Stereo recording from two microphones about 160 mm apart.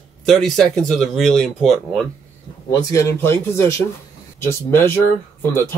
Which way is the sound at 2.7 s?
20° left (ahead or behind).